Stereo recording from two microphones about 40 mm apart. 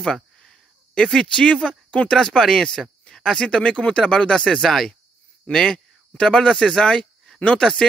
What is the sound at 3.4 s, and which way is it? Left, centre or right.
Speech, left.